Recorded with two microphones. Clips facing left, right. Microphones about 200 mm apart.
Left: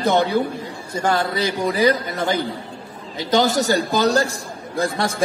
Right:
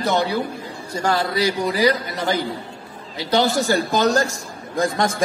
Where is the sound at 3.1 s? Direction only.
45° left (ahead or behind).